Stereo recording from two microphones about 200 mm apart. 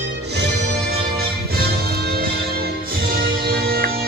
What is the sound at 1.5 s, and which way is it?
Music, 50° right (ahead or behind).